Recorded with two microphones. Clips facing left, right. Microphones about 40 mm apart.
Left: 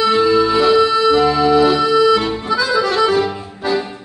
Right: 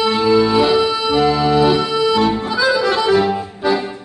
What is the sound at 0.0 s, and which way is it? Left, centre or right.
Music, centre.